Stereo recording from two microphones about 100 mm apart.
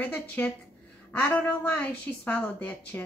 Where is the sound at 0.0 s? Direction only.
15° left (ahead or behind).